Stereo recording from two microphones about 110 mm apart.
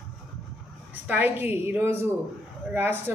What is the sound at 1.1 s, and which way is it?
A woman's voice, 20° right (ahead or behind).